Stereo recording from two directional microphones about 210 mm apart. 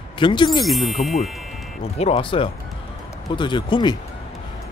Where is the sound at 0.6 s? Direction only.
Centre (ahead or behind).